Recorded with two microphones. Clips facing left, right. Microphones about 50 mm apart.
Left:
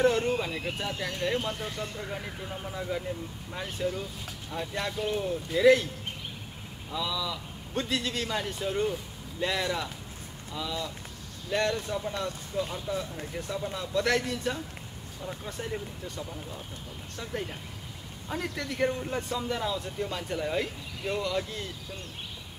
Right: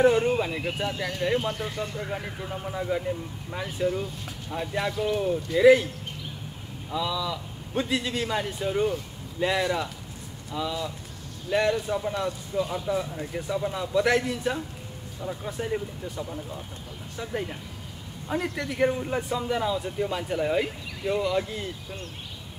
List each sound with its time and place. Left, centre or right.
0.0 s a man's voice: centre
6.9 s a man's voice: centre
18.6 s a man's voice: centre